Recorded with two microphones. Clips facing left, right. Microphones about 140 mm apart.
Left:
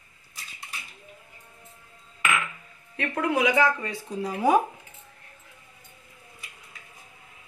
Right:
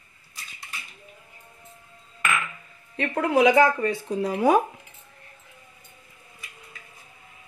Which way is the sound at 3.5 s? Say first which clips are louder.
Right 5 dB; 50° right (ahead or behind).